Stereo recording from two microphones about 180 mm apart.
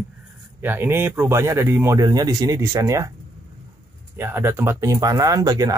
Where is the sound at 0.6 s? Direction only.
10° right (ahead or behind).